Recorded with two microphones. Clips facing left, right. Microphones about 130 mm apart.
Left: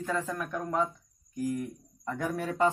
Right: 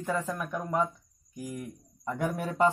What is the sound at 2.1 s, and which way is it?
Speech, 15° right (ahead or behind).